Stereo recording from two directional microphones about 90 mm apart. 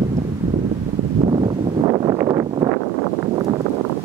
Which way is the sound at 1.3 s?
70° right (ahead or behind).